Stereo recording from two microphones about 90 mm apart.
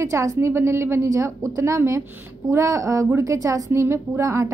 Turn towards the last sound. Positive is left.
turn(degrees=-35)  # may be behind; listen again after turning